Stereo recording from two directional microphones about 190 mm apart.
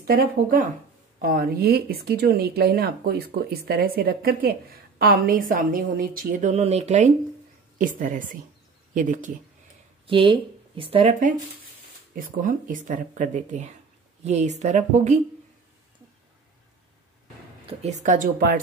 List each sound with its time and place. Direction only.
0.0 s speech: 50° right (ahead or behind)
10.0 s a woman's voice: 25° right (ahead or behind)
17.6 s speech: 40° right (ahead or behind)